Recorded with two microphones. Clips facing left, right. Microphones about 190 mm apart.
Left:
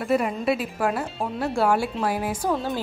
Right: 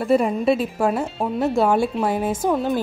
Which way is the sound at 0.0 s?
25° right (ahead or behind).